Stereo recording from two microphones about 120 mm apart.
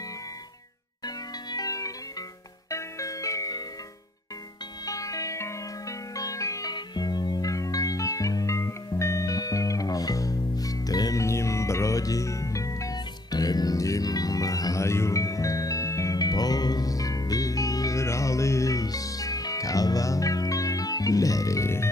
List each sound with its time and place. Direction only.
1.0 s music: 35° left (ahead or behind)
4.8 s music: 30° left (ahead or behind)